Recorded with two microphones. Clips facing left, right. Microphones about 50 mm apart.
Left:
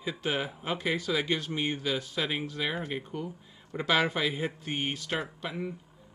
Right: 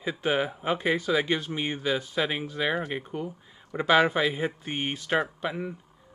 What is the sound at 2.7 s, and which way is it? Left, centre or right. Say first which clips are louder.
Speech: right 4 dB; right.